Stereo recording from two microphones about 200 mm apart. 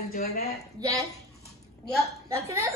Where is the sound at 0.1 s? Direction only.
50° left (ahead or behind).